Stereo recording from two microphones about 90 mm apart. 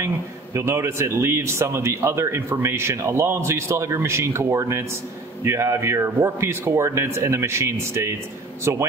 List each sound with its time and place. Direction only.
0.6 s speech: 30° right (ahead or behind)